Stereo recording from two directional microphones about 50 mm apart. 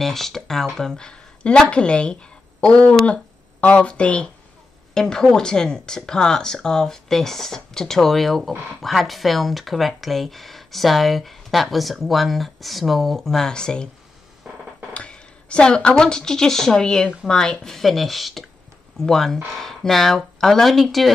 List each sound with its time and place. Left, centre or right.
0.0 s speech: centre; by 4.3 s left
4.9 s speech: centre
14.5 s music: centre
15.0 s speech: left; by 21.1 s centre